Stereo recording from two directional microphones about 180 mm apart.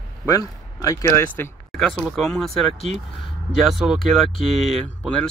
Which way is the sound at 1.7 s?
Centre (ahead or behind).